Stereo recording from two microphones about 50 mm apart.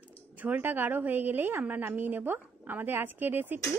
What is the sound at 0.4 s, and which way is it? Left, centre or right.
A woman's voice, right.